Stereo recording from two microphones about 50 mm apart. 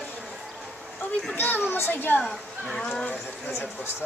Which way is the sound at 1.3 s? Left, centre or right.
Left.